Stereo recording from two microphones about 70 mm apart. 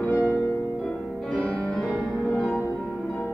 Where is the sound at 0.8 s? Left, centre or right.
Centre.